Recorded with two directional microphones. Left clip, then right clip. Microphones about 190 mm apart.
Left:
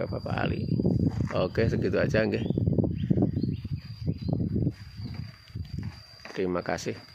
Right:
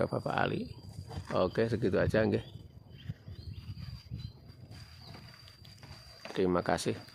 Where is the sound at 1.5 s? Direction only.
15° left (ahead or behind).